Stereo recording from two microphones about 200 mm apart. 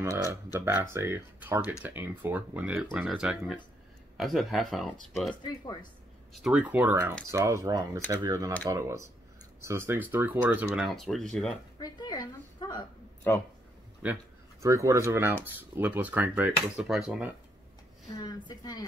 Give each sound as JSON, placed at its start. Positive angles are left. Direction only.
{"t": 0.0, "sound": "speech", "side_deg": -15}
{"t": 5.4, "sound": "a woman's voice", "side_deg": 20}
{"t": 6.3, "sound": "speech", "side_deg": -5}
{"t": 11.8, "sound": "a woman's voice", "side_deg": 20}
{"t": 14.6, "sound": "speech", "side_deg": -15}
{"t": 18.2, "sound": "a woman's voice", "side_deg": 20}